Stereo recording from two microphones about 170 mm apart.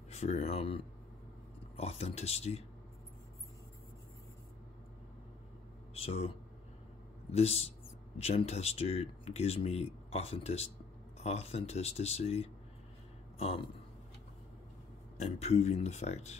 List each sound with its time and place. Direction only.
0.1 s speech: 40° left (ahead or behind)
5.9 s speech: 35° left (ahead or behind)
15.1 s speech: 40° left (ahead or behind)